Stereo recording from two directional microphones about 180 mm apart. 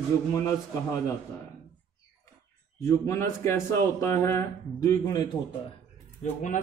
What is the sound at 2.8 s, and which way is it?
Speech, 15° left (ahead or behind).